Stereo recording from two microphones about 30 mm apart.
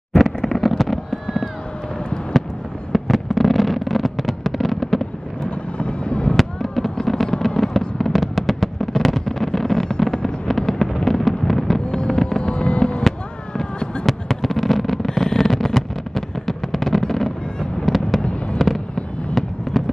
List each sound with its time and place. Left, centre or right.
0.1 s fireworks: centre
2.9 s fireworks: centre
5.5 s fireworks: left
6.3 s fireworks: centre
11.9 s fireworks: left
12.5 s fireworks: left
14.3 s a sound: centre
17.0 s fireworks: centre
19.7 s a sound: centre